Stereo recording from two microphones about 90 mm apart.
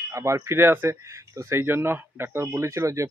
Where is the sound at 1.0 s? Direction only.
35° right (ahead or behind).